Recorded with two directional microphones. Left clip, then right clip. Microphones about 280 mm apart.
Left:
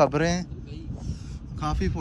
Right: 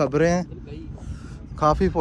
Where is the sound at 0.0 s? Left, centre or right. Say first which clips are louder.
Right 2 dB; centre.